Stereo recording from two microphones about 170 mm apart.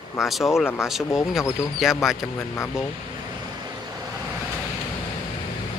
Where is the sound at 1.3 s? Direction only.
Centre (ahead or behind).